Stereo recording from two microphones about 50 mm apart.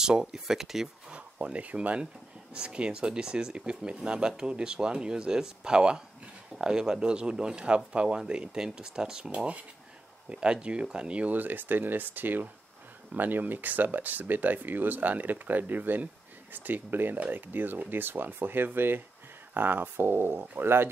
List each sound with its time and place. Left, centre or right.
0.0 s speech: centre
1.1 s speech: right
9.3 s speech: right